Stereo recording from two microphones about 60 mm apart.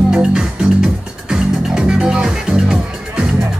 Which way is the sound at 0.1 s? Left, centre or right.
Centre.